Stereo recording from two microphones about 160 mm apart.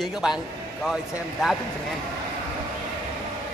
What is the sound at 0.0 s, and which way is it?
Speech, centre (ahead or behind).